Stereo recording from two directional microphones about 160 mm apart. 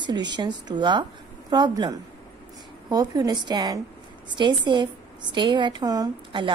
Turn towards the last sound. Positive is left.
turn(degrees=-30)  # may be behind; listen again after turning